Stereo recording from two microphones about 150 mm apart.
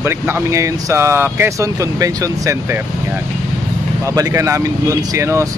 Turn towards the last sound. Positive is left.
turn(degrees=-20)  # may be behind; listen again after turning